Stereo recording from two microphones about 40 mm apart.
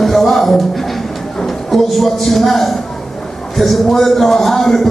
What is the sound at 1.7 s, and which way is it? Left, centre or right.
Speech, centre.